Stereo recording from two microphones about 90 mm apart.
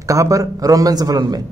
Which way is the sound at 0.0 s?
40° right (ahead or behind).